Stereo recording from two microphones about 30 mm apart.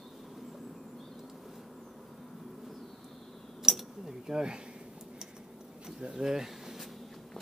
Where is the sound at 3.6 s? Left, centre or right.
Centre.